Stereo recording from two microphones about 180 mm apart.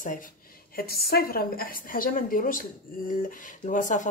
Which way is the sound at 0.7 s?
55° left (ahead or behind).